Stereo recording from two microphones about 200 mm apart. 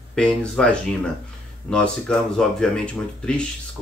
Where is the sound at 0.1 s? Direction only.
5° left (ahead or behind).